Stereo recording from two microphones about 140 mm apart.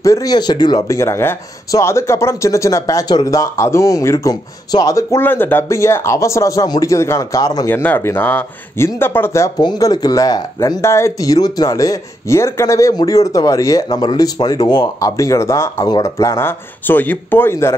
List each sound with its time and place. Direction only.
0.0 s speech: 25° left (ahead or behind)
7.7 s speech: 15° left (ahead or behind)